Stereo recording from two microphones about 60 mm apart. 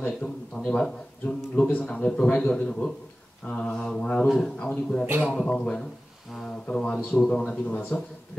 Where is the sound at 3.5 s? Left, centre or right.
Centre.